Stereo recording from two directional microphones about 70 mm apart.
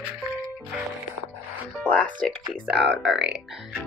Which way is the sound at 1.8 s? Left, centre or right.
Centre.